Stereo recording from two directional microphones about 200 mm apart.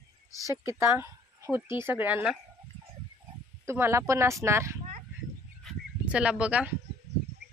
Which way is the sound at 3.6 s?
10° right (ahead or behind).